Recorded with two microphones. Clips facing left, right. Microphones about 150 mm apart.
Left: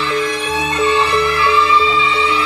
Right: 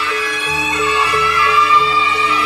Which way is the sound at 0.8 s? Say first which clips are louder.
Left 3 dB; 30° left (ahead or behind).